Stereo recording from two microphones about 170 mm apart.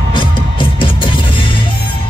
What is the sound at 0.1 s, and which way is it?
Music, 30° left (ahead or behind).